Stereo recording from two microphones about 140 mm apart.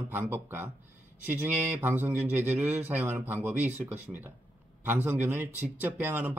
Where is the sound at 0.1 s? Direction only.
15° right (ahead or behind).